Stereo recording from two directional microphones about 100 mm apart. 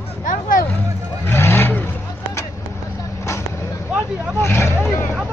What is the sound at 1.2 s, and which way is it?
Vehicle, 25° left (ahead or behind).